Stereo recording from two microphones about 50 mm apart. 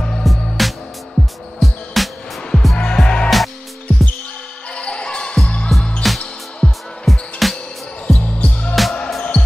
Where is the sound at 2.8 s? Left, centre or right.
Centre.